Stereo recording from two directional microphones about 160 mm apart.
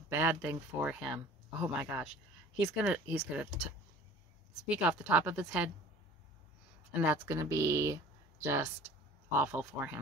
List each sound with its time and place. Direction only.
0.1 s speech: 15° right (ahead or behind)
4.6 s speech: 10° right (ahead or behind)
7.0 s speech: 15° right (ahead or behind)